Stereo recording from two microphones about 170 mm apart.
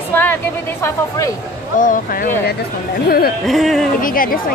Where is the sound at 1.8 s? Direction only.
55° left (ahead or behind).